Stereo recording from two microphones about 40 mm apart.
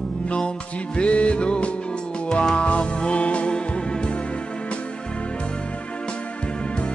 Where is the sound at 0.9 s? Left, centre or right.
Left.